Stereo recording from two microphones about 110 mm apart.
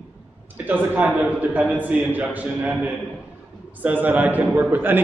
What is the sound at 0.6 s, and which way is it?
A man's voice, 15° right (ahead or behind).